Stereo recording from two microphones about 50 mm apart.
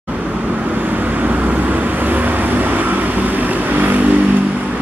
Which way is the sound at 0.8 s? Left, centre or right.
Right.